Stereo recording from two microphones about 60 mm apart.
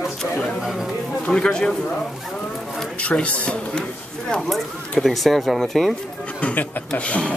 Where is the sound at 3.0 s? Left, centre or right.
Left.